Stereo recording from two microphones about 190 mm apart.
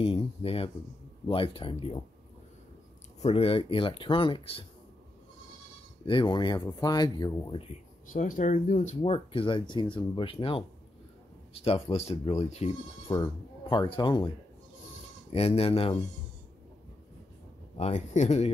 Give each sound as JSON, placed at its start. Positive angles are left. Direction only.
{"t": 0.0, "sound": "speech", "side_deg": 30}
{"t": 3.2, "sound": "speech", "side_deg": 35}
{"t": 6.0, "sound": "speech", "side_deg": 25}
{"t": 8.1, "sound": "speech", "side_deg": 45}
{"t": 13.1, "sound": "speech", "side_deg": 20}
{"t": 15.3, "sound": "speech", "side_deg": 30}
{"t": 17.7, "sound": "speech", "side_deg": 35}